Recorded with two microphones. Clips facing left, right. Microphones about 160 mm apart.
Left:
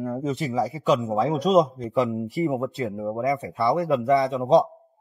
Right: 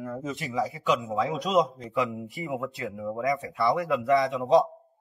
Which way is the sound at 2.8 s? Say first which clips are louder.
Left 6 dB; 40° left (ahead or behind).